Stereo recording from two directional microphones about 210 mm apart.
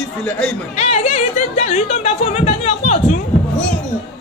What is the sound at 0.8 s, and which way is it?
Speech, 30° left (ahead or behind).